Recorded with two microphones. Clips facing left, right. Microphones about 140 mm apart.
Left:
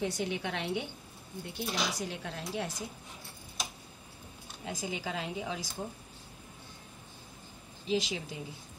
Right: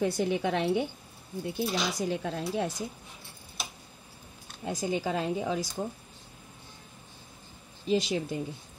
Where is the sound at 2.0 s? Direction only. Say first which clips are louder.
Right 8 dB; 45° right (ahead or behind).